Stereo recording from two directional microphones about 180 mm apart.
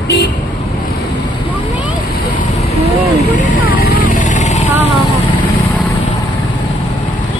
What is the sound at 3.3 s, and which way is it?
Vehicle, 45° left (ahead or behind).